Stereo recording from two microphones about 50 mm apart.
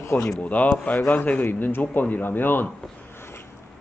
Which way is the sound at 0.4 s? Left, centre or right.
Left.